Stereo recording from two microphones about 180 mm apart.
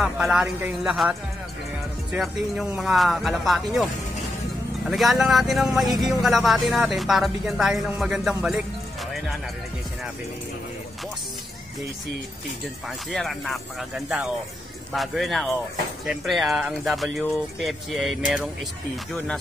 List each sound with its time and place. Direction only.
0.0 s speech: centre (ahead or behind)
2.1 s speech: 5° right (ahead or behind)
13.1 s speech: centre (ahead or behind)